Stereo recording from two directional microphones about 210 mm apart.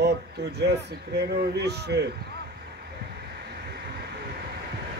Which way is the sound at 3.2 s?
50° right (ahead or behind).